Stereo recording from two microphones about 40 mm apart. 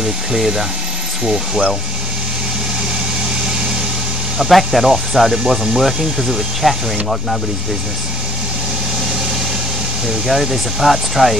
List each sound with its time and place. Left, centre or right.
0.0 s speech: centre
4.4 s speech: centre
10.0 s speech: centre